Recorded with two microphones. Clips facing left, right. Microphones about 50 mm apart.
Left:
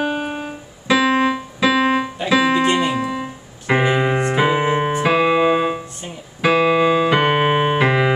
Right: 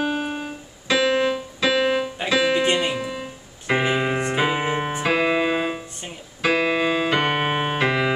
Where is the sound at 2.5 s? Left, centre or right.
Left.